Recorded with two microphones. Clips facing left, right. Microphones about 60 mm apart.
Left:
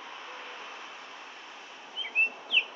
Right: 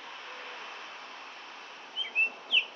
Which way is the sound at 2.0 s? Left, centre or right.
Centre.